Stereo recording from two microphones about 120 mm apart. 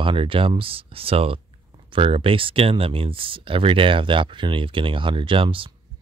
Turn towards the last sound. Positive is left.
turn(degrees=-45)  # may be behind; listen again after turning